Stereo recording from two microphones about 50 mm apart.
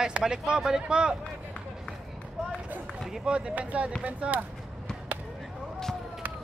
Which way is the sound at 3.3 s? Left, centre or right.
Right.